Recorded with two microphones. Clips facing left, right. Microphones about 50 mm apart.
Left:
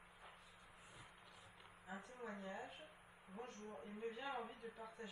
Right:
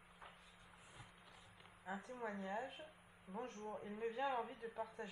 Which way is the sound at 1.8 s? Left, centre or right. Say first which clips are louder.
Right 5 dB; right.